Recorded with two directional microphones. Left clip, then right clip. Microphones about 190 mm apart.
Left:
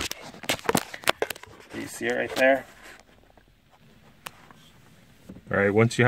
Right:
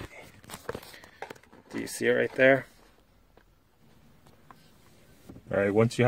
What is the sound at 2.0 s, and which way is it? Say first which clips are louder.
Speech: even; 60° right (ahead or behind).